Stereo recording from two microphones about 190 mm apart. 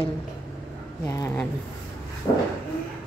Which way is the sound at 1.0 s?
15° left (ahead or behind).